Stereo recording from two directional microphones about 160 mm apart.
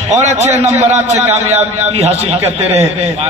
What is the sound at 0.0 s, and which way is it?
A man's voice, 45° right (ahead or behind).